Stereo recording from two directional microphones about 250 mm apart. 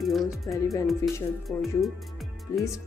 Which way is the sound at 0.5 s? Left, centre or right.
Centre.